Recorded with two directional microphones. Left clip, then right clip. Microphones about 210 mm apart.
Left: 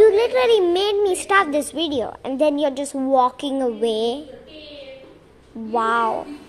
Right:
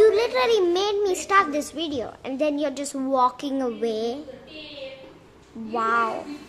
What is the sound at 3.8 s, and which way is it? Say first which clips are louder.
Speech: left 7 dB; 20° right (ahead or behind).